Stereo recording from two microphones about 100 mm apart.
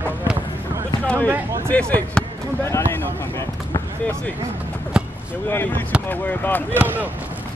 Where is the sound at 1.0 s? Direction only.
15° left (ahead or behind).